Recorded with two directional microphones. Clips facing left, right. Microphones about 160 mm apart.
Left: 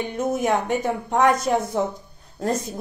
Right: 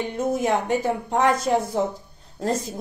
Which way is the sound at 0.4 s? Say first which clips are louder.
Left 1 dB; 25° right (ahead or behind).